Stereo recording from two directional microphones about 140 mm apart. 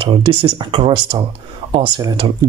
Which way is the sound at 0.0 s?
40° right (ahead or behind).